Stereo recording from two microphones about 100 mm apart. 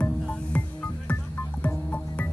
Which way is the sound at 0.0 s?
15° left (ahead or behind).